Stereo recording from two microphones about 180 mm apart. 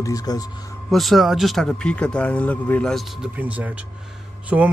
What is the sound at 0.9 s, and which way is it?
Speech, centre (ahead or behind).